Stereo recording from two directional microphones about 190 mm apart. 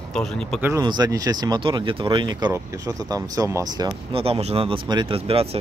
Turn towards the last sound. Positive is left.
turn(degrees=-30)  # may be behind; listen again after turning